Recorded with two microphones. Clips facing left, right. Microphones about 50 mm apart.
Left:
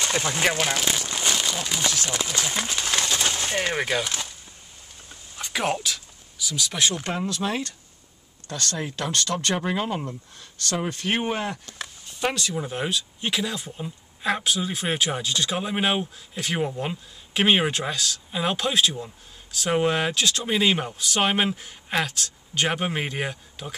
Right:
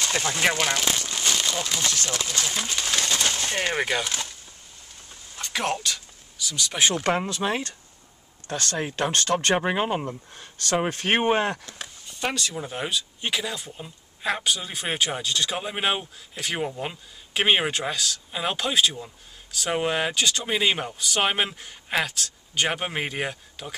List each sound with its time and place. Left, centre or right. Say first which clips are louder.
0.1 s speech: right 1 dB; centre
1.0 s crumpling: left 1 dB; centre
1.4 s speech: even; centre
3.2 s a sound: even; centre
3.5 s speech: left 1 dB; centre
5.4 s a sound: left 1 dB; centre
7.2 s speech: even; centre; by 11.6 s right
11.8 s speech: left 4 dB; centre